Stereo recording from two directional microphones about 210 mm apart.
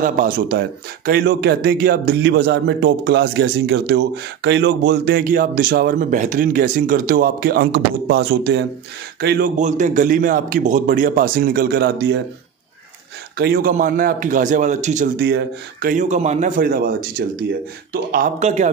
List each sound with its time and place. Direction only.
0.0 s speech: 45° right (ahead or behind)
9.6 s a man's voice: 35° right (ahead or behind); by 12.2 s 50° right (ahead or behind)
13.4 s a man's voice: 45° right (ahead or behind)
15.1 s a man's voice: 50° right (ahead or behind); by 18.7 s 35° right (ahead or behind)